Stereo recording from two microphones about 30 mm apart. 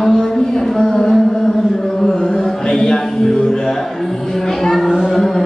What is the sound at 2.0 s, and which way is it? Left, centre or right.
Chant, centre.